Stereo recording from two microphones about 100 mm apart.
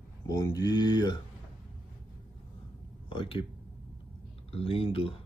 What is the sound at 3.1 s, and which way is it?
Speech, 60° left (ahead or behind).